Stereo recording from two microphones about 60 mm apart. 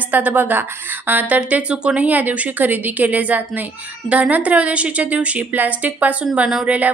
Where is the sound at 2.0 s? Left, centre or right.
Right.